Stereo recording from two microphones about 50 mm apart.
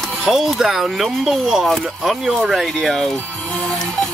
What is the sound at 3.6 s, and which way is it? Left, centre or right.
Music, centre.